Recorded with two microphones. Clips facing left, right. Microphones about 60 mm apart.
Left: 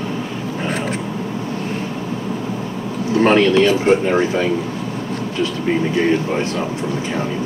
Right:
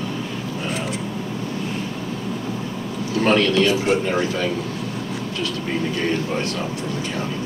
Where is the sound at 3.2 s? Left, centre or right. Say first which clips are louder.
Left 5 dB; left.